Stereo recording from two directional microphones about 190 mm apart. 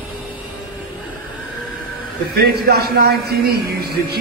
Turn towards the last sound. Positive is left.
turn(degrees=-55)  # may be behind; listen again after turning